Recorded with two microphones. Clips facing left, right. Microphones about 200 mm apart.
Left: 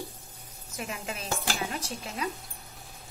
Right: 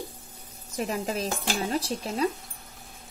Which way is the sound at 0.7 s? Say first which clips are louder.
Right 7 dB; 35° right (ahead or behind).